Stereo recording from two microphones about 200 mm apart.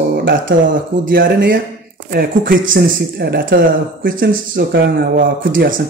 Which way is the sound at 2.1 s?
45° right (ahead or behind).